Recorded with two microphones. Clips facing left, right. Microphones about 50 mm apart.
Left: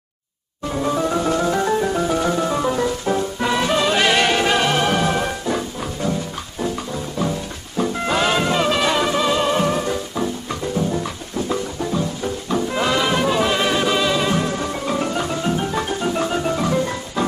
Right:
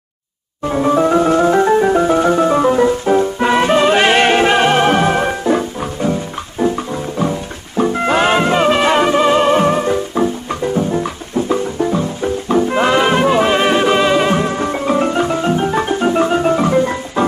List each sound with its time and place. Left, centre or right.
0.7 s music: right